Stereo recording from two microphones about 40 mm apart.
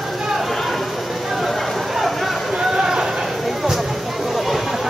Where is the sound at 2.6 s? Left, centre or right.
Centre.